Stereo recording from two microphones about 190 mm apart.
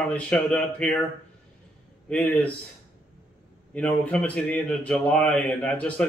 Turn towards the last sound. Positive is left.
turn(degrees=5)  # may be behind; listen again after turning